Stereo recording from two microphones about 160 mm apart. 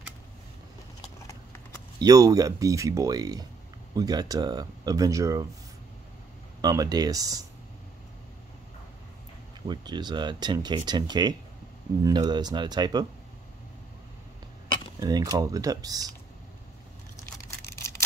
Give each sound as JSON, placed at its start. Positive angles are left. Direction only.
{"t": 2.0, "sound": "speech", "side_deg": -20}
{"t": 6.6, "sound": "speech", "side_deg": -25}
{"t": 9.7, "sound": "speech", "side_deg": -25}
{"t": 15.0, "sound": "speech", "side_deg": -25}